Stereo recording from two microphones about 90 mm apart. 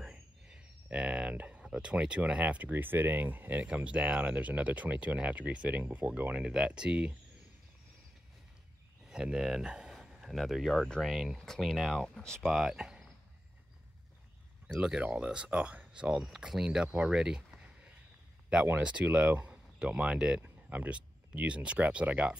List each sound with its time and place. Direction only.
0.0 s speech: 10° right (ahead or behind)
9.0 s speech: 10° right (ahead or behind)
14.7 s speech: 10° right (ahead or behind)
18.8 s speech: 10° right (ahead or behind)